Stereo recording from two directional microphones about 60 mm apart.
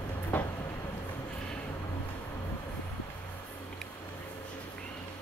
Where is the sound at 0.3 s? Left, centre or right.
Left.